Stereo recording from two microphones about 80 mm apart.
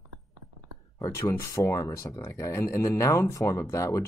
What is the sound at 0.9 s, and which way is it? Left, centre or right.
Speech, left.